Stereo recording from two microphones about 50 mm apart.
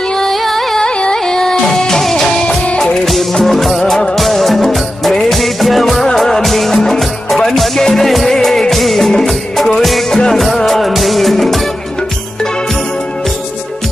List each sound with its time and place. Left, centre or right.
0.1 s music: centre
0.8 s music: centre